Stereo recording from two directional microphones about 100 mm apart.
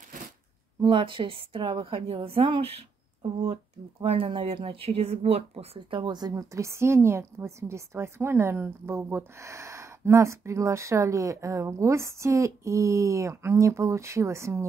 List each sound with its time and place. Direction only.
0.8 s a woman's voice: 55° right (ahead or behind); by 5.7 s 90° right
5.9 s a woman's voice: 50° right (ahead or behind); by 14.6 s 30° right (ahead or behind)